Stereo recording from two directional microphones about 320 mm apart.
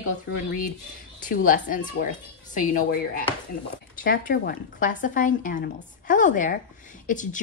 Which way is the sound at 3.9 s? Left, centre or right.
Left.